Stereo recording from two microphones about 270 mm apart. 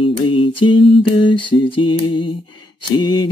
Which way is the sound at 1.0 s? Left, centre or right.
Centre.